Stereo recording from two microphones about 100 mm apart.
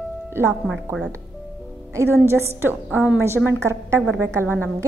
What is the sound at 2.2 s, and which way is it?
A woman's voice, 25° right (ahead or behind).